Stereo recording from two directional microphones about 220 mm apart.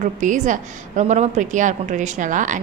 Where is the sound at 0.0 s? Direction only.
35° right (ahead or behind).